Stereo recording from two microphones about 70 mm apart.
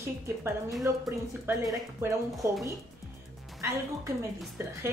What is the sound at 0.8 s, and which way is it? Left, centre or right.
Speech, right.